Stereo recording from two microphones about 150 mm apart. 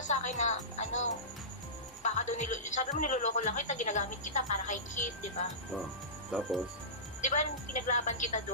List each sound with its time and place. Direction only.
0.0 s speech: 55° left (ahead or behind)
6.3 s speech: centre (ahead or behind)
7.2 s speech: 55° left (ahead or behind)